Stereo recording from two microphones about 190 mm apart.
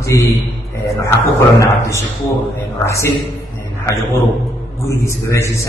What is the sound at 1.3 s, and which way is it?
A man's voice, 15° left (ahead or behind).